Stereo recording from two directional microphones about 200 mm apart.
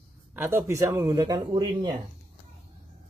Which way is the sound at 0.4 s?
10° right (ahead or behind).